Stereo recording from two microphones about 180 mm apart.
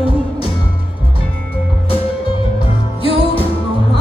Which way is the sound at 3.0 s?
30° left (ahead or behind).